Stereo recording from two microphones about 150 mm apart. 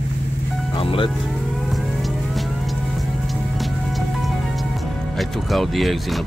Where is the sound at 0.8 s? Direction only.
40° left (ahead or behind).